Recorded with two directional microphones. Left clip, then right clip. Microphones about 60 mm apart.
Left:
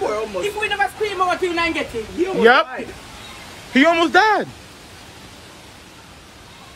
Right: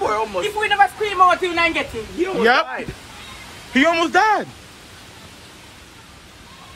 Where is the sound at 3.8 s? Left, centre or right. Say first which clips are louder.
Left 2 dB; left.